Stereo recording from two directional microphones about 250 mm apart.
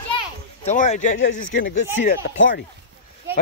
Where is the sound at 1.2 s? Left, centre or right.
Left.